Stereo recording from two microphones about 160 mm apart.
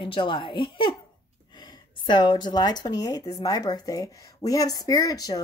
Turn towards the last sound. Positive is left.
turn(degrees=20)  # may be behind; listen again after turning